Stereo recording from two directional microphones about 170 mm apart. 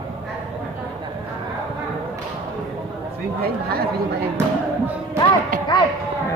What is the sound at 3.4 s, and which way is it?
Speech, 65° right (ahead or behind).